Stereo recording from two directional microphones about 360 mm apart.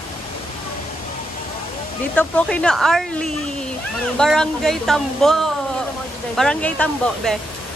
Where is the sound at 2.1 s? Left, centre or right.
Centre.